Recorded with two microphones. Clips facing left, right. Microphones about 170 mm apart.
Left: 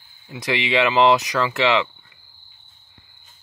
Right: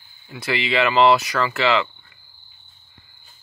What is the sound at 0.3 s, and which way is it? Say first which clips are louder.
Speech: left 1 dB; 15° left (ahead or behind).